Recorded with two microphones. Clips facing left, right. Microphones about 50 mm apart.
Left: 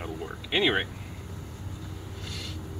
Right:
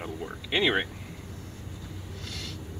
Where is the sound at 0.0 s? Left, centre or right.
Centre.